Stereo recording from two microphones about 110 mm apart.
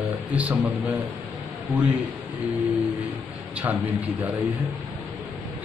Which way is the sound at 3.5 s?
15° right (ahead or behind).